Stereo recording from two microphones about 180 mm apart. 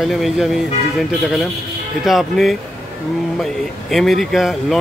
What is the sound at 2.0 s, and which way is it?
Speech, centre (ahead or behind).